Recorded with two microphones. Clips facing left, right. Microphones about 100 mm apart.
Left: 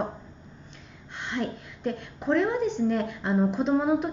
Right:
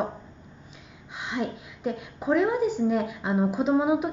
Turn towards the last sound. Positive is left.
turn(degrees=-5)  # may be behind; listen again after turning